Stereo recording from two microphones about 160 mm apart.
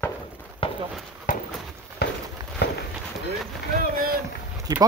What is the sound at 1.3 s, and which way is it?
Run, 55° left (ahead or behind).